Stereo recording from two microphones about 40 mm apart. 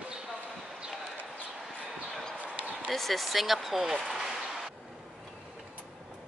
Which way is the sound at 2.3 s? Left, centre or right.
Right.